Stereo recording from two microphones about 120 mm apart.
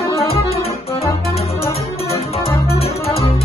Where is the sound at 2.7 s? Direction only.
55° left (ahead or behind).